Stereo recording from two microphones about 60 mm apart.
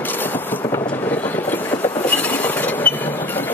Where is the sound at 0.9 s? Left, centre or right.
Left.